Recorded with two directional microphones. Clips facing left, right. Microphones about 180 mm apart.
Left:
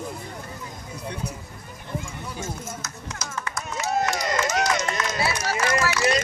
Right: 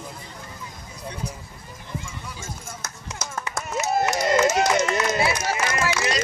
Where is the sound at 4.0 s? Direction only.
25° right (ahead or behind).